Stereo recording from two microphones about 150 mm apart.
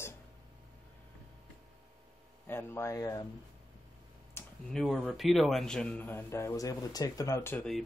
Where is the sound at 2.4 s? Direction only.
15° left (ahead or behind).